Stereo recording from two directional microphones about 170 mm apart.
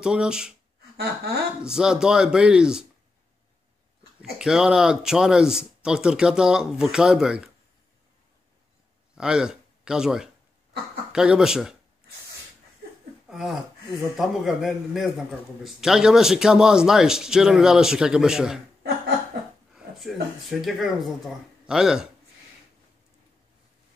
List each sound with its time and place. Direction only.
0.0 s speech: 5° right (ahead or behind)
0.9 s a sound: 65° right (ahead or behind)
1.6 s speech: 5° right (ahead or behind)
4.2 s speech: 5° right (ahead or behind)
9.1 s a man's voice: 5° right (ahead or behind)
13.3 s speech: centre (ahead or behind)
19.7 s speech: centre (ahead or behind)